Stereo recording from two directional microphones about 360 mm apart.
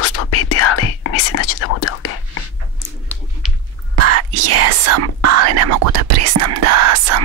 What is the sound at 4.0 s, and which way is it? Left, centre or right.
Whispering, right.